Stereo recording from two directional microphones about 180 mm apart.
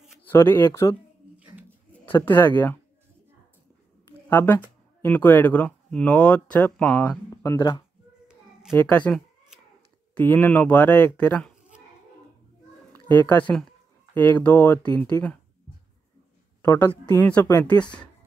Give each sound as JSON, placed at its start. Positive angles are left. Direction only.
{"t": 0.2, "sound": "speech", "side_deg": 10}
{"t": 2.2, "sound": "speech", "side_deg": 10}
{"t": 4.3, "sound": "speech", "side_deg": 10}
{"t": 7.5, "sound": "speech", "side_deg": 25}
{"t": 8.7, "sound": "speech", "side_deg": 10}
{"t": 12.9, "sound": "speech", "side_deg": 10}
{"t": 16.6, "sound": "a woman's voice", "side_deg": 10}